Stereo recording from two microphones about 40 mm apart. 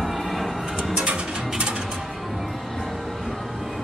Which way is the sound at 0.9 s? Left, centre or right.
Right.